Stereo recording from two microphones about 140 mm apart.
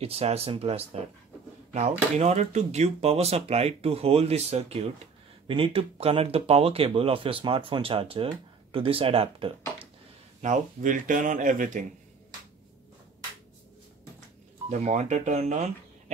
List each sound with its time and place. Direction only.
0.0 s speech: 45° right (ahead or behind)
10.4 s speech: 65° right (ahead or behind)
14.7 s speech: 60° right (ahead or behind)